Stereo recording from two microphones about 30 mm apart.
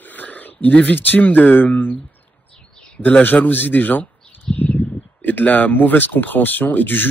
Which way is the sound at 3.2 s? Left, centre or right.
Left.